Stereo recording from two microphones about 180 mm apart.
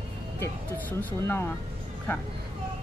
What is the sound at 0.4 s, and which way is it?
Speech, 15° left (ahead or behind).